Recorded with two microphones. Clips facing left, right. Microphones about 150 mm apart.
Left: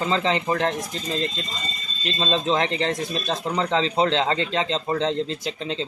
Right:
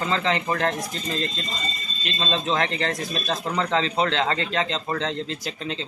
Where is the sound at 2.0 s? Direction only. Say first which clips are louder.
Left 3 dB; 30° left (ahead or behind).